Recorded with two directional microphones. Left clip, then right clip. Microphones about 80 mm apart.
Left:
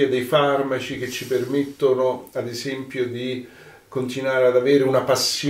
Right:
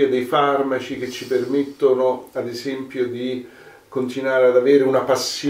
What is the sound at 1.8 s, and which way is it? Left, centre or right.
Speech, left.